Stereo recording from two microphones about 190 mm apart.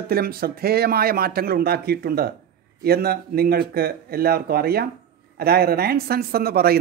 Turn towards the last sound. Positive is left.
turn(degrees=-55)  # may be behind; listen again after turning